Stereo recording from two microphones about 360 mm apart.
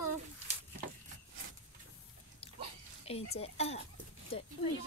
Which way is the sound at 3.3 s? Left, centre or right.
Centre.